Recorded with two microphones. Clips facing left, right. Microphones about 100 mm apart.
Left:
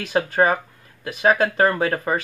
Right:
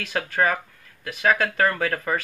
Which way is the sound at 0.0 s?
25° left (ahead or behind).